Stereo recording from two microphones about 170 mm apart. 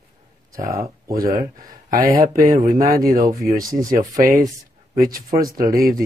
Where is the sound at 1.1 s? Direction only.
55° right (ahead or behind).